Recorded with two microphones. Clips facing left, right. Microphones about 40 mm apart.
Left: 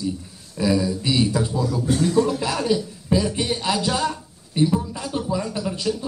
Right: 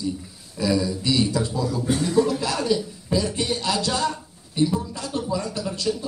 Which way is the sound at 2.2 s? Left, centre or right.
Centre.